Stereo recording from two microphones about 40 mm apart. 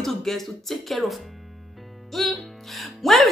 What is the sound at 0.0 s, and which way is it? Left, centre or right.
Speech, centre.